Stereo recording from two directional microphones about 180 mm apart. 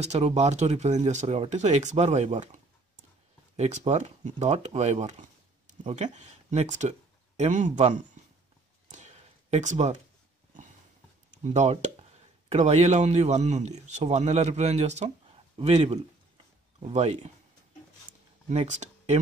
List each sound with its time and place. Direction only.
0.0 s speech: 35° right (ahead or behind)
6.1 s speech: 40° right (ahead or behind)
8.8 s a sound: 40° right (ahead or behind)
11.4 s speech: 40° right (ahead or behind)
18.5 s speech: 40° right (ahead or behind)